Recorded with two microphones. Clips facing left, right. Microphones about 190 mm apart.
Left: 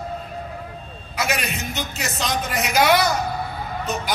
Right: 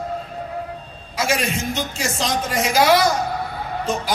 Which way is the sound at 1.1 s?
30° right (ahead or behind).